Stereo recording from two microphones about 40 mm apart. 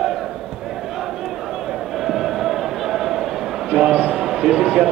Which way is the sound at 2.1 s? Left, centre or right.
Centre.